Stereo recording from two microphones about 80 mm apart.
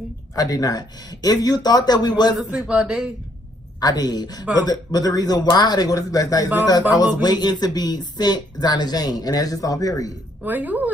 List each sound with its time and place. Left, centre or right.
0.4 s a woman's voice: left
2.3 s a man's voice: centre
3.8 s a woman's voice: left
10.4 s a woman's voice: right